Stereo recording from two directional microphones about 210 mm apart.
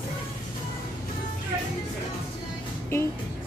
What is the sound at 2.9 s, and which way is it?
Speech, 10° left (ahead or behind).